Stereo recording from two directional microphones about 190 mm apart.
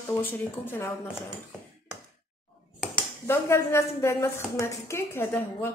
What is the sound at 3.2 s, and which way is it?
A woman's voice, 15° left (ahead or behind).